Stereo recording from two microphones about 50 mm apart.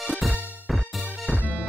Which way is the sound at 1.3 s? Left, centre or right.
Right.